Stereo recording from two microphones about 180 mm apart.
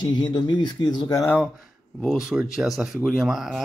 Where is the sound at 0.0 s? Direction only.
25° left (ahead or behind).